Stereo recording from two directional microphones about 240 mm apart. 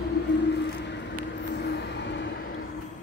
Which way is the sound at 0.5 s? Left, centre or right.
Left.